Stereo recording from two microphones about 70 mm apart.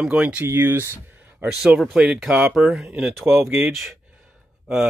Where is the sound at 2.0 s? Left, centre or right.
Centre; by 3.7 s right.